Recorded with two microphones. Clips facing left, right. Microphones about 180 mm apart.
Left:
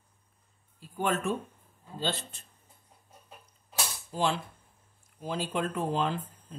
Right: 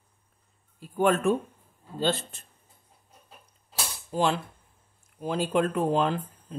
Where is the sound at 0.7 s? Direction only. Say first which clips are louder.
Right 7 dB; 55° right (ahead or behind).